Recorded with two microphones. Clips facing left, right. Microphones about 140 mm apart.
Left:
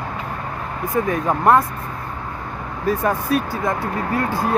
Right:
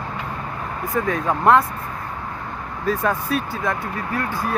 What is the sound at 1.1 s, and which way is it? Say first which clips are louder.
Speech: even; 15° left (ahead or behind).